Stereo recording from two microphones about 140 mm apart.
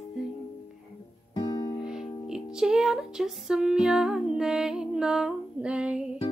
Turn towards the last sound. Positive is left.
turn(degrees=-10)  # may be behind; listen again after turning